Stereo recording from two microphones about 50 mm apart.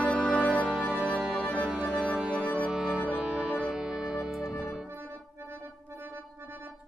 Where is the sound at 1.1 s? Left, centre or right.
Centre.